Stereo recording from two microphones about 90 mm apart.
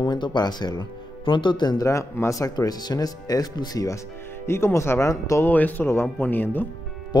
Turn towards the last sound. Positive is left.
turn(degrees=50)  # may be behind; listen again after turning